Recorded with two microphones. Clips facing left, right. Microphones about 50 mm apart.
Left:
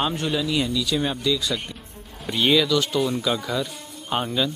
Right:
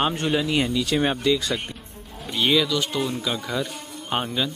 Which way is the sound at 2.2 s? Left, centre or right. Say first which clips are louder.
Left 1 dB; centre.